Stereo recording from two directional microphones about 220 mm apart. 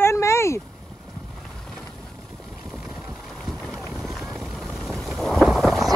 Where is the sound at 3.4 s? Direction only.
Centre (ahead or behind).